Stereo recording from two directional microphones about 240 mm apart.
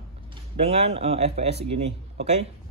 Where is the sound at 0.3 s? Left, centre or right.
Right.